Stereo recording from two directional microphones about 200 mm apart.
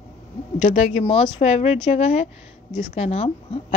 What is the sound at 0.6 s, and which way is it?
Speech, 35° left (ahead or behind).